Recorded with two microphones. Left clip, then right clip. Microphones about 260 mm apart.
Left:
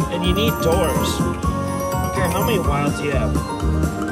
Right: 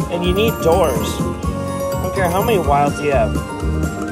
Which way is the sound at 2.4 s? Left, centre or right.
Right.